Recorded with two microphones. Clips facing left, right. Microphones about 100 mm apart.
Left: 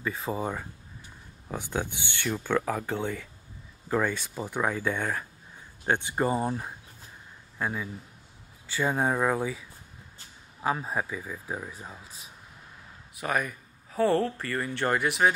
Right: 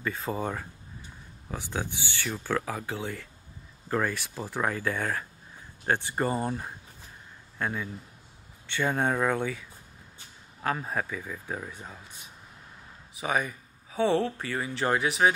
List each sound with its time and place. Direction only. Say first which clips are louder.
0.0 s speech: even; centre (ahead or behind)
1.6 s speech: left 1 dB; 20° left (ahead or behind)
2.4 s speech: left 3 dB; 5° right (ahead or behind)
6.1 s a man's voice: left 2 dB; 5° left (ahead or behind)